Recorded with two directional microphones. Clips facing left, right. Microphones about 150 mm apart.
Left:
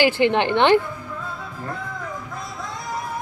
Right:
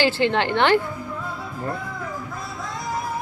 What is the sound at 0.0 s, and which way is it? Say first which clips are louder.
Speech: left 2 dB; 15° left (ahead or behind).